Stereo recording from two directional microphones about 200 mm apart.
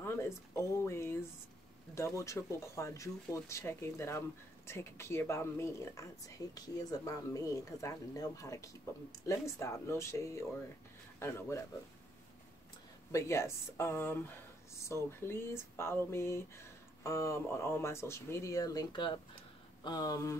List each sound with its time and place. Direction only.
0.0 s speech: 15° left (ahead or behind)
13.1 s speech: 15° left (ahead or behind)